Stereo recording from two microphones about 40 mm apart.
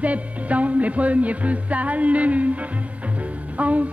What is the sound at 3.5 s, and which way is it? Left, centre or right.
Music, right.